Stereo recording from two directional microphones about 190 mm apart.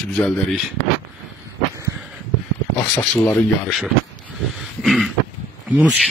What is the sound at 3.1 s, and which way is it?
Speech, 10° left (ahead or behind).